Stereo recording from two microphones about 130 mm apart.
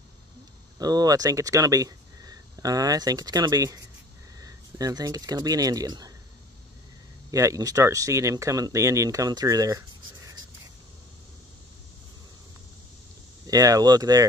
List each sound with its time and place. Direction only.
0.7 s speech: 30° right (ahead or behind)
7.2 s speech: 25° right (ahead or behind)
13.5 s speech: 30° right (ahead or behind)